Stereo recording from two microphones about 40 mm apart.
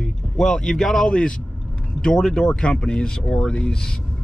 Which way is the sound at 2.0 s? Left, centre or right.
Centre.